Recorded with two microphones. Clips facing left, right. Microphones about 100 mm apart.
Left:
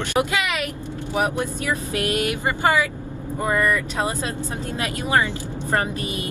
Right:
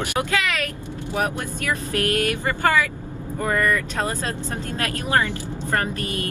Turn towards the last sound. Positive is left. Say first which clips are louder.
# left 1 dB
turn(degrees=15)  # may be behind; listen again after turning